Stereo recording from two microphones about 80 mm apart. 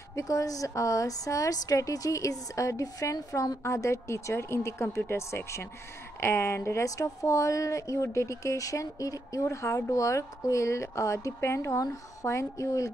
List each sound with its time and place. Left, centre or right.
0.1 s a woman's voice: left